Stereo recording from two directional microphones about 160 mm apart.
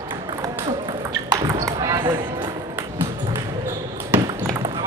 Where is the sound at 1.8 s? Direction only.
30° right (ahead or behind).